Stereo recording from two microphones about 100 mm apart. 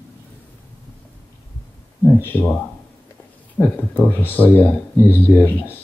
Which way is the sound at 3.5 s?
20° left (ahead or behind).